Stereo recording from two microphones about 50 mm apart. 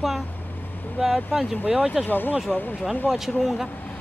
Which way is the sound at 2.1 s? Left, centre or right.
Left.